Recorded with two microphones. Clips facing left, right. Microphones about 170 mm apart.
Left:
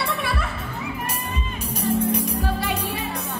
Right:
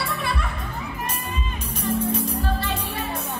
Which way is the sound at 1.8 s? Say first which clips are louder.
Left 2 dB; 10° left (ahead or behind).